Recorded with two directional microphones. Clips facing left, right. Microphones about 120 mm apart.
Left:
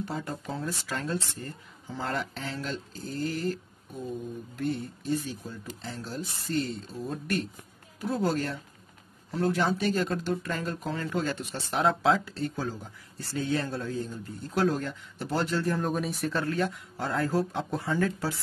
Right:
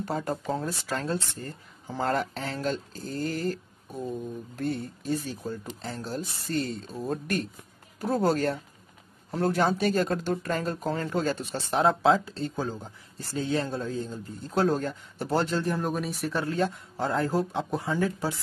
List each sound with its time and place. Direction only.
0.0 s speech: 45° right (ahead or behind)
4.6 s speech: 40° right (ahead or behind)
15.8 s speech: centre (ahead or behind)
16.3 s speech: 15° right (ahead or behind)
16.5 s speech: 30° right (ahead or behind); by 18.3 s 15° right (ahead or behind)